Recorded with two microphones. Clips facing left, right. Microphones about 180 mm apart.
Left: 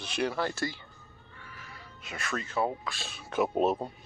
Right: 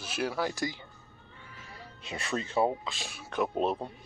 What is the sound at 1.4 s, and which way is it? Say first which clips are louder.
Music: right 1 dB; 20° right (ahead or behind).